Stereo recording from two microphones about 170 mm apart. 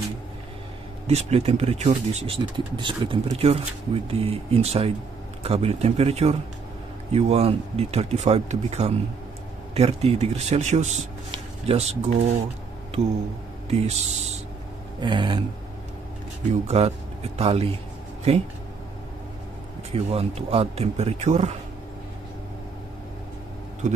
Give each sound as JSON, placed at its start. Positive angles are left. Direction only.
{"t": 1.0, "sound": "speech", "side_deg": -40}
{"t": 13.7, "sound": "speech", "side_deg": -40}
{"t": 15.0, "sound": "a sound", "side_deg": -30}
{"t": 16.6, "sound": "speech", "side_deg": -40}
{"t": 19.9, "sound": "speech", "side_deg": -35}